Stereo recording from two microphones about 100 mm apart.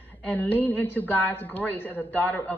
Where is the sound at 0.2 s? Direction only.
15° left (ahead or behind).